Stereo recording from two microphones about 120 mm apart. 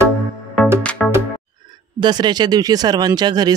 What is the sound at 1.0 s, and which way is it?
Music, 5° left (ahead or behind).